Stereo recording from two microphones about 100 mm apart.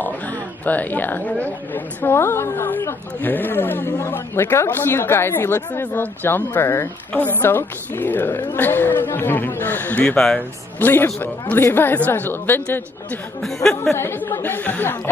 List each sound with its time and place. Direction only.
0.0 s speech: 15° left (ahead or behind)
10.8 s speech: 20° left (ahead or behind)
13.4 s speech: 5° left (ahead or behind)
13.9 s speech: 25° left (ahead or behind)